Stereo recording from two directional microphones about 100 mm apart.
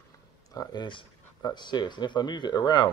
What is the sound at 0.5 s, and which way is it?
Speech, 50° left (ahead or behind).